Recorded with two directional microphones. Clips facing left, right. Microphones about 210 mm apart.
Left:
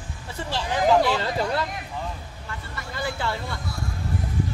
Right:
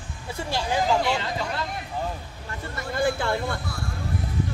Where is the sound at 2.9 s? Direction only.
50° right (ahead or behind).